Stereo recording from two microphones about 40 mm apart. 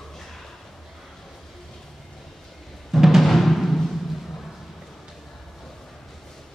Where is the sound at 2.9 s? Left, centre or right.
Centre.